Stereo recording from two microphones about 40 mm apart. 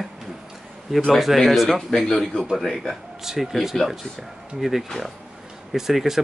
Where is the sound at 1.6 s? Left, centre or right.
Centre.